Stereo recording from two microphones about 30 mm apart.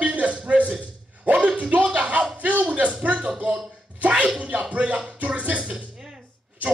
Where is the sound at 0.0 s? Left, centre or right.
Right.